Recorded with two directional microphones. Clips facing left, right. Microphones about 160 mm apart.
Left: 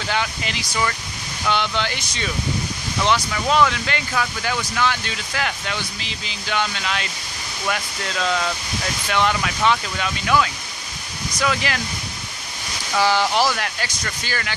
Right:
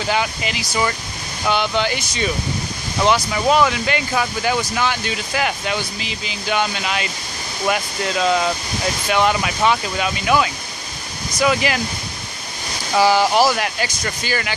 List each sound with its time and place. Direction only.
0.1 s speech: 10° right (ahead or behind)
12.9 s speech: 10° right (ahead or behind)